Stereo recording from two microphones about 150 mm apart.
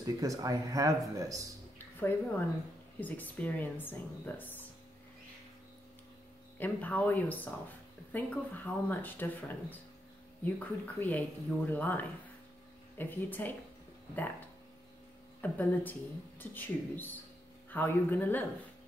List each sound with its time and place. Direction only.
0.0 s speech: 25° right (ahead or behind)
1.8 s speech: 10° left (ahead or behind)
6.6 s speech: 10° left (ahead or behind)
15.4 s speech: 10° left (ahead or behind)